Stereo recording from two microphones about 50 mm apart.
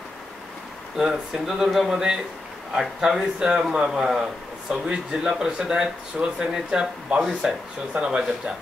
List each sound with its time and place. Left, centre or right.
0.9 s a man's voice: centre